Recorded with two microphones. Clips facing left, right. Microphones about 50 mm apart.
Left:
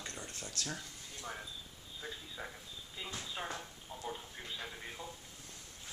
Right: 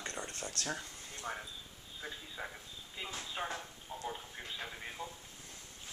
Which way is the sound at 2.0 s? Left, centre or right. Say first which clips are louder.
Right 1 dB; centre.